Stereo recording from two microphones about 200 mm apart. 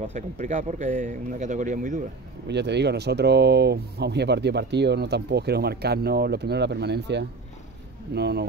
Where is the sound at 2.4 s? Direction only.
60° right (ahead or behind).